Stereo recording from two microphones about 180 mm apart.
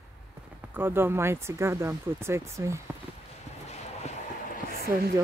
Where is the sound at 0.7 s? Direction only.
10° right (ahead or behind).